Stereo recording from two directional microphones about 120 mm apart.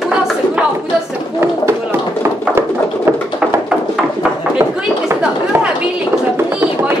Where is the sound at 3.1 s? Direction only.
20° right (ahead or behind).